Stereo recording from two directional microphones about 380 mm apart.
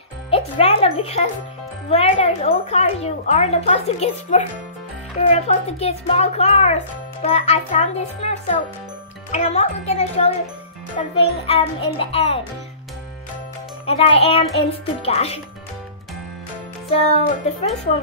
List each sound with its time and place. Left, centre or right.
0.3 s speech: centre
13.8 s speech: centre
16.9 s speech: centre